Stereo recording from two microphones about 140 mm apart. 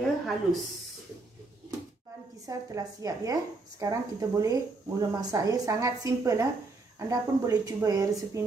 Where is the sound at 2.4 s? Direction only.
25° right (ahead or behind).